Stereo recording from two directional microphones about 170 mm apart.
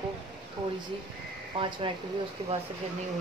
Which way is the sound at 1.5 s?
30° right (ahead or behind).